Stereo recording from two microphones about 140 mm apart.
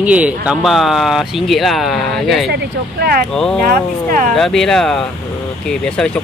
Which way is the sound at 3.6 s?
85° right.